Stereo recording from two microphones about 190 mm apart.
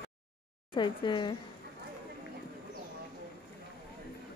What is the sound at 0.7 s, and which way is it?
Speech, 25° left (ahead or behind).